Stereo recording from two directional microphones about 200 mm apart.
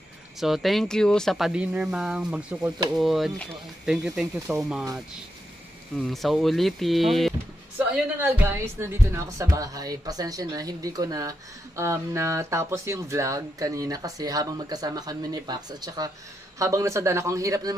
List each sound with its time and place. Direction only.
0.4 s speech: centre (ahead or behind)
5.9 s speech: centre (ahead or behind); by 17.7 s 15° right (ahead or behind)